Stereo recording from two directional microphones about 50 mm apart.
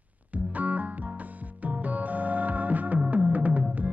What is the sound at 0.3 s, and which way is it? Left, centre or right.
Music, right.